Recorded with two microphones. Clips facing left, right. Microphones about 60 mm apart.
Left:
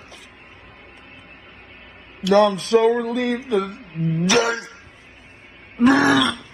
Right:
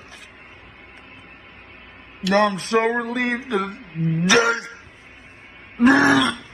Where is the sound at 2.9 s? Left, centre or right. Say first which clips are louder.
Left 1 dB; right.